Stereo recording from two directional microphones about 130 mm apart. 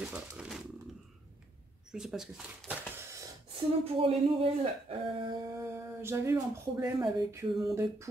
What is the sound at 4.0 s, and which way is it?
Speech, 45° right (ahead or behind).